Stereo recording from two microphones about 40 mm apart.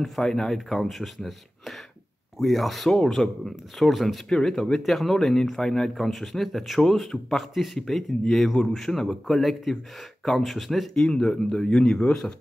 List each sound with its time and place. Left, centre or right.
0.2 s speech: centre
2.3 s speech: centre
4.3 s speech: centre
11.2 s speech: centre